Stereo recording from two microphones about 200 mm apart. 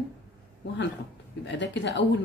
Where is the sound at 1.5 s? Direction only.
60° left (ahead or behind).